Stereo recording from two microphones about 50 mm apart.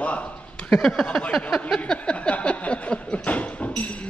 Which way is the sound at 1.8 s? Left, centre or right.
Left.